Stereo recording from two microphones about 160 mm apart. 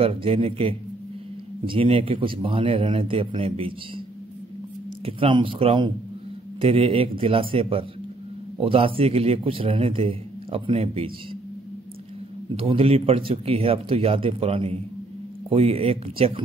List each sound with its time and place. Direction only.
0.0 s a man's voice: 35° right (ahead or behind)
5.0 s a man's voice: 35° right (ahead or behind)
12.4 s a man's voice: 35° right (ahead or behind)